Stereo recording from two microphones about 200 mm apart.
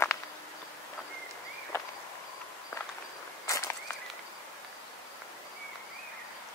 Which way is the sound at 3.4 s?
15° left (ahead or behind).